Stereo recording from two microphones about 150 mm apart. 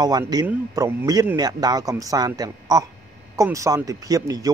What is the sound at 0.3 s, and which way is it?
A man's voice, 25° right (ahead or behind).